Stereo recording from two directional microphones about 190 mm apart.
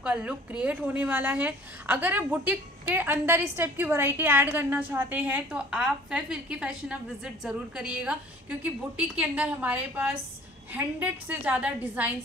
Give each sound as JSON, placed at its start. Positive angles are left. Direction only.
{"t": 0.0, "sound": "a woman's voice", "side_deg": -5}